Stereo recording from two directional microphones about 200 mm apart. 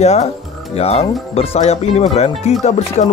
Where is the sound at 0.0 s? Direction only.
35° left (ahead or behind).